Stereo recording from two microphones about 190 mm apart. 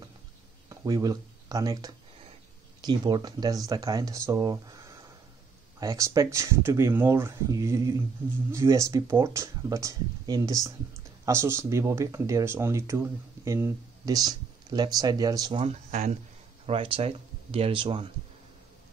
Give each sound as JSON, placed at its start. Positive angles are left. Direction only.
{"t": 0.7, "sound": "speech", "side_deg": -20}
{"t": 15.9, "sound": "speech", "side_deg": -35}